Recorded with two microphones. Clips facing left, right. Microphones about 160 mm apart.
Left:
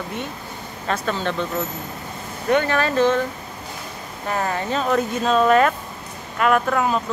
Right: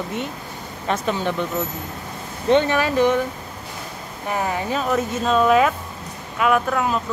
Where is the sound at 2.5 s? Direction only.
20° right (ahead or behind).